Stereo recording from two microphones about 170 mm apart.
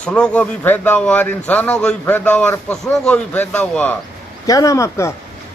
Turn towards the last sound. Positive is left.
turn(degrees=15)  # may be behind; listen again after turning